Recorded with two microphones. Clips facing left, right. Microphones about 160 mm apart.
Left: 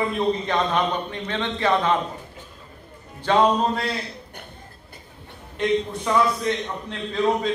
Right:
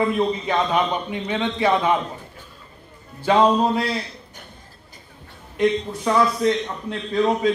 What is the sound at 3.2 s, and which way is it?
Speech, 10° right (ahead or behind).